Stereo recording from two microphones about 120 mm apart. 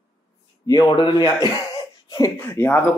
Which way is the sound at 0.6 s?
35° left (ahead or behind).